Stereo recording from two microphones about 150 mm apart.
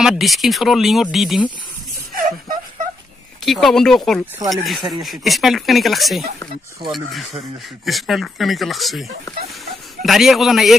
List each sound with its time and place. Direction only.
0.0 s speech: centre (ahead or behind)
3.4 s speech: centre (ahead or behind)
10.0 s speech: centre (ahead or behind)